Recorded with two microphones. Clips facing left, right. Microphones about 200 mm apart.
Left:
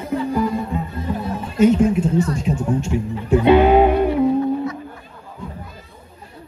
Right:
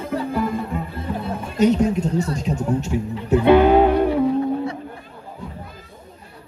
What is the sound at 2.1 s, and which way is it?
Speech, 40° right (ahead or behind).